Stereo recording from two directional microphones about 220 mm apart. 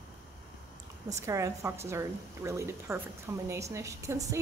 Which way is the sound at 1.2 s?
15° right (ahead or behind).